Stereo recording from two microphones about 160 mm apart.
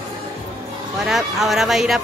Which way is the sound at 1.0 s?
Centre (ahead or behind).